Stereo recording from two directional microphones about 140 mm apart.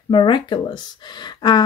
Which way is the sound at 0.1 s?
35° left (ahead or behind).